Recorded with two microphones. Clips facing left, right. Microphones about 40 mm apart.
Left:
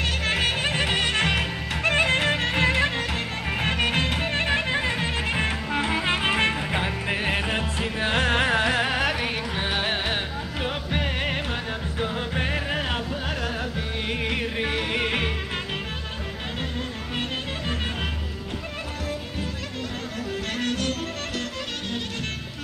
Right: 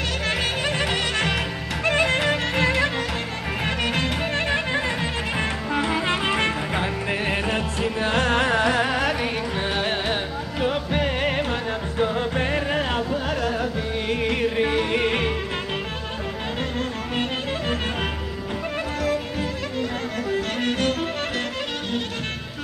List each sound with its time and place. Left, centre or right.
0.3 s music: left
6.0 s music: left; by 15.3 s centre
17.1 s music: centre
20.2 s music: centre